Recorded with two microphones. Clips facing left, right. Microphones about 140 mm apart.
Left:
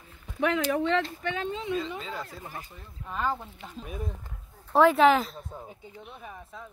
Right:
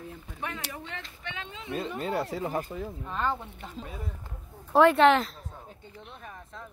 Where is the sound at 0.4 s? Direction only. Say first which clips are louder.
Left 13 dB; 90° left.